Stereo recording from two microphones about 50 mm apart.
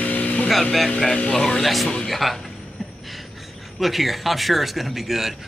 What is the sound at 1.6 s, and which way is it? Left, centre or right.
Speech, centre.